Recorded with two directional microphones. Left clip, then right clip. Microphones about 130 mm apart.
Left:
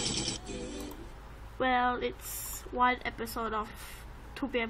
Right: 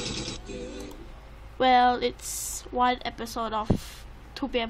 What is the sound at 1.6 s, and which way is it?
Speech, 40° right (ahead or behind).